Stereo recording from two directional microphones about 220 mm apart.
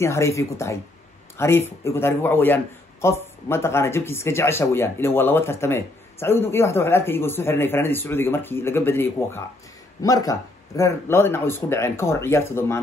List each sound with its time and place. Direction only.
0.0 s a man's voice: 15° left (ahead or behind)